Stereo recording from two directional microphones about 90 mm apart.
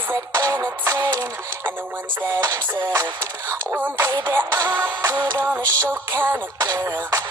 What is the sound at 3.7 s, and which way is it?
Music, 20° right (ahead or behind).